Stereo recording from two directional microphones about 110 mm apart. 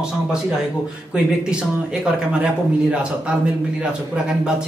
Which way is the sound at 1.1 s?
10° right (ahead or behind).